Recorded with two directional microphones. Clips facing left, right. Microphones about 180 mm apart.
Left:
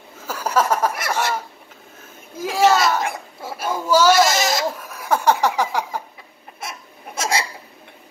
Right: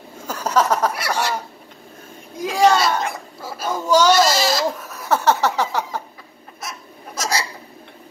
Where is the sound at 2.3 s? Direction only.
5° left (ahead or behind).